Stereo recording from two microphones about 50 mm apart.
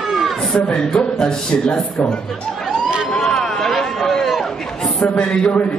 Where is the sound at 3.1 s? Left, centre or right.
Centre.